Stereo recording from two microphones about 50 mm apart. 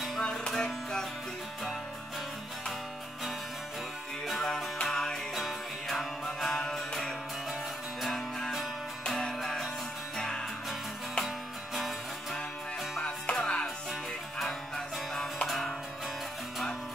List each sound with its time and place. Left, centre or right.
0.2 s music: centre
4.3 s music: centre
5.3 s music: centre
8.0 s music: centre
11.2 s music: centre
13.0 s music: left
15.4 s music: centre